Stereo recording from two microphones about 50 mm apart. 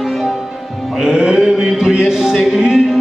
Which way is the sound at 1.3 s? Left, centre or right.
Centre.